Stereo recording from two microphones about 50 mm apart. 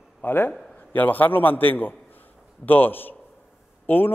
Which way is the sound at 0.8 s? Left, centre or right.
Left.